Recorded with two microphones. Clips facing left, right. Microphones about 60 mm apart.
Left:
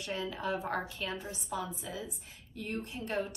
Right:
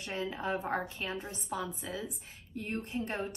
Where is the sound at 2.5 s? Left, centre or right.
Right.